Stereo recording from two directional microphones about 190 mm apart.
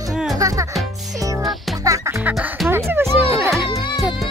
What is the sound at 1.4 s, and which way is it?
Music, centre (ahead or behind).